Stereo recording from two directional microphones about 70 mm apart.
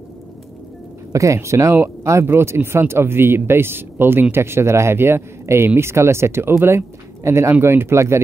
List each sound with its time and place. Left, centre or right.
1.1 s speech: right